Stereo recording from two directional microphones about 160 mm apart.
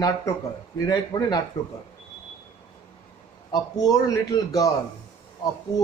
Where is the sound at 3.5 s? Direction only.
25° left (ahead or behind).